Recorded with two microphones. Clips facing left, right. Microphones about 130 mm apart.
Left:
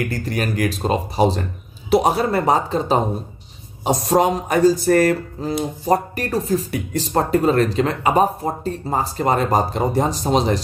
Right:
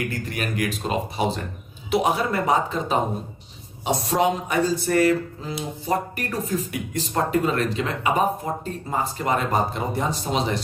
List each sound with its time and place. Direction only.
0.1 s speech: 35° left (ahead or behind)